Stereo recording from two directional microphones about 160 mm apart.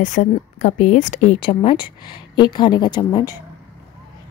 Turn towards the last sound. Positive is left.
turn(degrees=25)  # may be behind; listen again after turning